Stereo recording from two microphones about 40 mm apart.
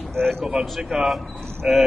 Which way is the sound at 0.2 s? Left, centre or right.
Centre.